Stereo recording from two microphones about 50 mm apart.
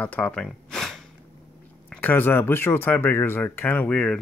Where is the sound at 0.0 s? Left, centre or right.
Left.